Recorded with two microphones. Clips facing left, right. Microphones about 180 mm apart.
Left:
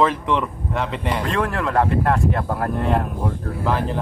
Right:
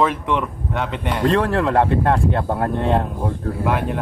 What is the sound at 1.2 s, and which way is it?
Speech, 35° right (ahead or behind).